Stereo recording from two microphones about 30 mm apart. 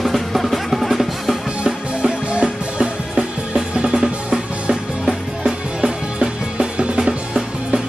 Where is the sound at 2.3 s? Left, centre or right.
Right.